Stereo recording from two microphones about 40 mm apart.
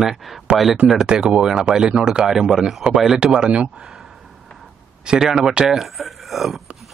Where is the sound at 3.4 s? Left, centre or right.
Right.